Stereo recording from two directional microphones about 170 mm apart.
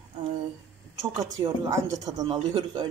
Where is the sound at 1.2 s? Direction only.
20° right (ahead or behind).